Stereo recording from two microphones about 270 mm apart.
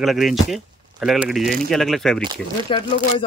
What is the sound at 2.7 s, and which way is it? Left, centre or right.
Speech, centre.